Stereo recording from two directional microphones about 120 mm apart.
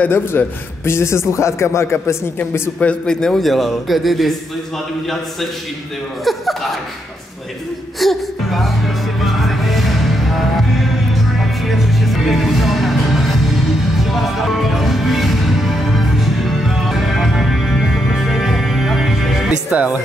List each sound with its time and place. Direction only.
0.0 s a man's voice: 20° left (ahead or behind)
2.9 s a man's voice: 5° left (ahead or behind)
6.2 s a man's voice: centre (ahead or behind)
8.0 s music: centre (ahead or behind)